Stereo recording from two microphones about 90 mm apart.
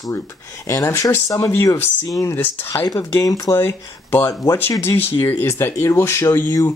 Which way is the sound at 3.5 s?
30° left (ahead or behind).